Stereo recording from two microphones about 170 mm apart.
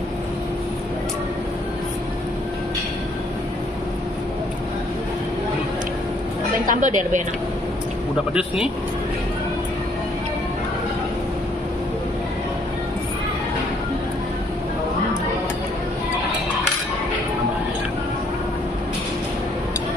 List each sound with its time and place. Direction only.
6.6 s a woman's voice: 50° right (ahead or behind)
8.3 s speech: 5° right (ahead or behind)